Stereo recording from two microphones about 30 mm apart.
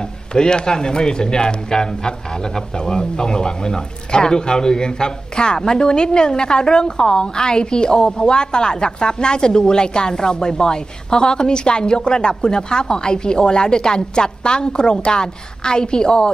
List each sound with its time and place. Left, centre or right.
0.3 s a man's voice: left
0.7 s a man's voice: centre